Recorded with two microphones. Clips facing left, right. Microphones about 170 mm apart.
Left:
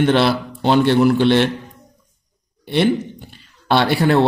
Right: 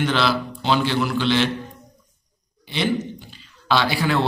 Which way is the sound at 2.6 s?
60° left (ahead or behind).